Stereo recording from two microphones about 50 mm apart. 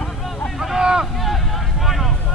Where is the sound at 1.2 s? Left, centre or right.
Centre.